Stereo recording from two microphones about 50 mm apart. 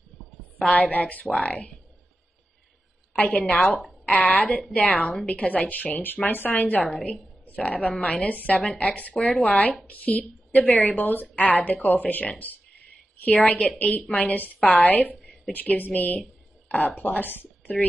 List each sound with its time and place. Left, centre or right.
0.6 s speech: left
3.2 s a woman's voice: left
9.1 s speech: centre
9.4 s speech: left